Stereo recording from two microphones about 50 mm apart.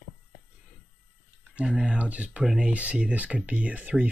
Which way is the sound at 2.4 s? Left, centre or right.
Centre.